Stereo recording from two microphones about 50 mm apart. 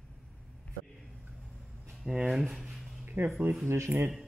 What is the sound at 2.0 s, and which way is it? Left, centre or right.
Speech, centre.